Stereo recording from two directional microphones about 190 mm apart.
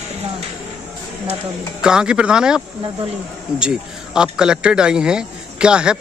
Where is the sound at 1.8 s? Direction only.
5° right (ahead or behind).